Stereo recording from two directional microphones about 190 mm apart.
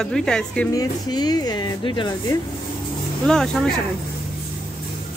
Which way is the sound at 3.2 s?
5° left (ahead or behind).